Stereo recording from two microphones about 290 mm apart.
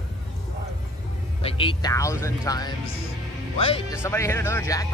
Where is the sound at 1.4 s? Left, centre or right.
Centre.